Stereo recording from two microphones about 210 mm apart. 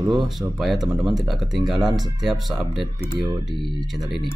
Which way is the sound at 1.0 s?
Centre (ahead or behind).